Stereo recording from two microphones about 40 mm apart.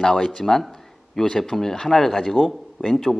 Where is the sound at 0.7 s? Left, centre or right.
Centre.